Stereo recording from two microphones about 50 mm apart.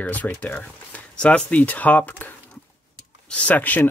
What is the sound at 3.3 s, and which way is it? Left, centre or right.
Speech, left.